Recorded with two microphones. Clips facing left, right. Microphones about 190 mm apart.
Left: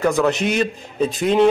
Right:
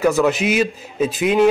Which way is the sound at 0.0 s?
5° right (ahead or behind).